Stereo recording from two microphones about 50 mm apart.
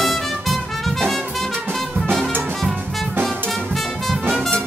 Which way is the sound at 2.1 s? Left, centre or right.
Centre.